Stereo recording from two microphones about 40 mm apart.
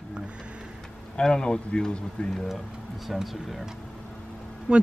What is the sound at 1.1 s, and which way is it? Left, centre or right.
Speech, centre.